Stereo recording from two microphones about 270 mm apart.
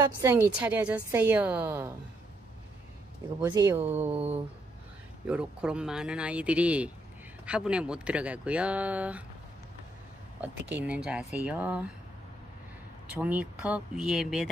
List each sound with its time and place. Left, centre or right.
0.0 s a woman's voice: centre
3.3 s a woman's voice: centre
4.1 s humming: right
5.2 s speech: centre
10.7 s speech: centre
13.1 s speech: centre